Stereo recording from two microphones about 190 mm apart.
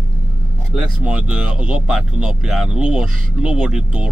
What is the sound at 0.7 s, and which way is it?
Speech, 5° right (ahead or behind).